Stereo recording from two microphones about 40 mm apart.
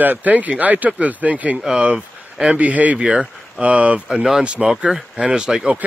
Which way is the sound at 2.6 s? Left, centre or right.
Right.